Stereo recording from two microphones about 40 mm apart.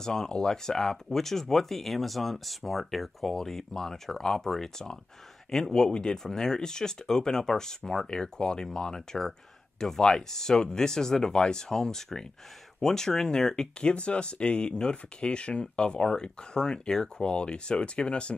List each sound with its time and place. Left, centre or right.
0.0 s speech: centre
13.8 s speech: left